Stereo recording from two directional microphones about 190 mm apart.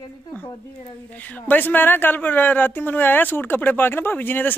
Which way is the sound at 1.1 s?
10° left (ahead or behind).